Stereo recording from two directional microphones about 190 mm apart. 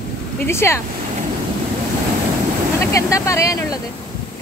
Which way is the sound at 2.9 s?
15° left (ahead or behind).